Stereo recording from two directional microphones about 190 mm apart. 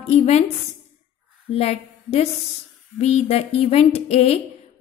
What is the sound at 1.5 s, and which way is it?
A woman's voice, 35° left (ahead or behind).